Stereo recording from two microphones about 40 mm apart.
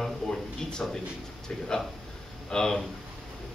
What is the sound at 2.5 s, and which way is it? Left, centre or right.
Speech, centre.